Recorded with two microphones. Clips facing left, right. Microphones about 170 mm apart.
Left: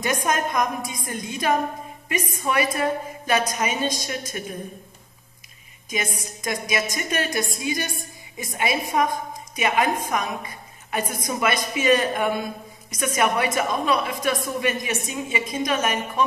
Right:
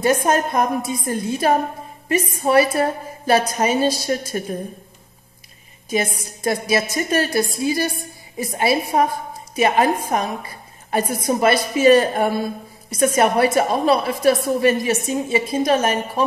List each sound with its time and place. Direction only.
0.0 s a woman's voice: 35° right (ahead or behind)
6.1 s a woman's voice: 30° right (ahead or behind)